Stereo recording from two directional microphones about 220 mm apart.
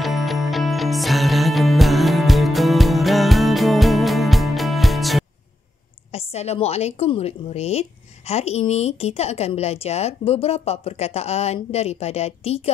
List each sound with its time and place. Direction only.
0.0 s music: centre (ahead or behind)
6.1 s a woman's voice: 30° left (ahead or behind)